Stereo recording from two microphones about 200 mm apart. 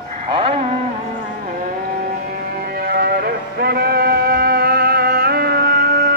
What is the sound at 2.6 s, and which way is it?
Music, 50° right (ahead or behind).